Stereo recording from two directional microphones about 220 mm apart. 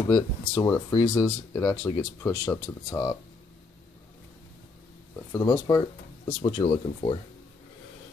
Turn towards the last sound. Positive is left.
turn(degrees=25)  # may be behind; listen again after turning